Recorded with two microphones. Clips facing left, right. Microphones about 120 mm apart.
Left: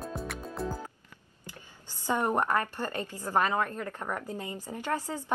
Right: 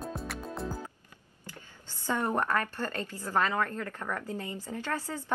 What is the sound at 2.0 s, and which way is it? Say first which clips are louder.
A woman's voice: left 2 dB; 15° left (ahead or behind).